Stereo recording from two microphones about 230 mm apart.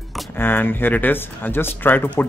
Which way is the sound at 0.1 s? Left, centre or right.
Centre.